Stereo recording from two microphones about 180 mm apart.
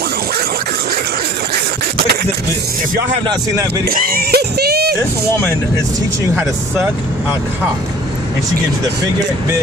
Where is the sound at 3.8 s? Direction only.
55° right (ahead or behind).